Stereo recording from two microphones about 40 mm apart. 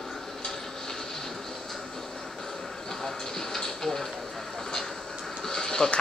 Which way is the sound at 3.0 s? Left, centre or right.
Centre.